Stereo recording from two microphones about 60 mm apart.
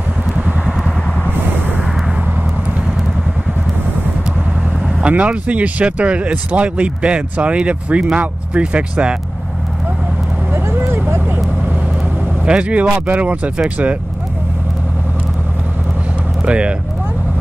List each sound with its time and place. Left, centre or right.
5.0 s speech: right
10.5 s a sound: right
12.4 s speech: centre
16.4 s speech: centre